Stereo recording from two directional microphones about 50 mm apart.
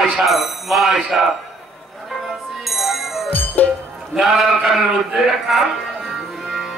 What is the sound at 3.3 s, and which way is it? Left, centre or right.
Music, left.